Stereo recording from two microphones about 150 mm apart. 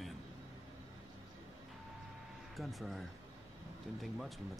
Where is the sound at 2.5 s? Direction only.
Centre (ahead or behind).